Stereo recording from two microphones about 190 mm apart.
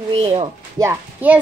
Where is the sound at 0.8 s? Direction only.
10° right (ahead or behind).